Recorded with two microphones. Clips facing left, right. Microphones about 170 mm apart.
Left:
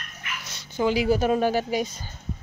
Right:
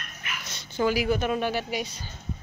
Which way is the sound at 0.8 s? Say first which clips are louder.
Left 2 dB; 25° left (ahead or behind).